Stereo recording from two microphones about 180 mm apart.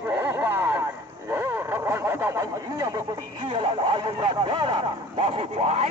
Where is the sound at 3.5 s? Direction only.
25° right (ahead or behind).